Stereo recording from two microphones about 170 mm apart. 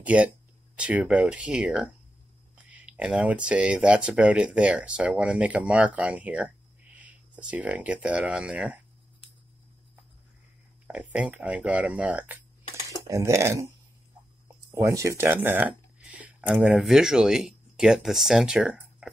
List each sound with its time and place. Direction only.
0.0 s speech: 5° right (ahead or behind)
10.9 s speech: 5° right (ahead or behind)
14.7 s speech: 15° right (ahead or behind)